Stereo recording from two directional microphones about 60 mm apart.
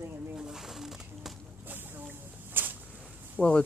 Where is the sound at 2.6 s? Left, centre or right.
Right.